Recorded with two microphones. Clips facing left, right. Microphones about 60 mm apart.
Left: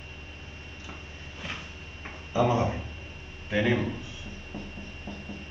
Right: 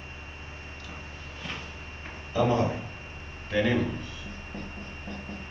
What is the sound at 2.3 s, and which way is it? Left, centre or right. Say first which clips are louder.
A man's voice: even; centre.